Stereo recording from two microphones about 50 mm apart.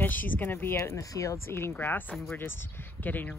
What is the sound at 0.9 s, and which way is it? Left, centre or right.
Speech, left.